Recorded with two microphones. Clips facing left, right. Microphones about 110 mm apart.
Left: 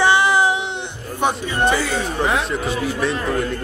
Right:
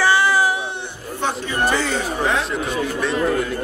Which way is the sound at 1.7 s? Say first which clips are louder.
Even; centre (ahead or behind).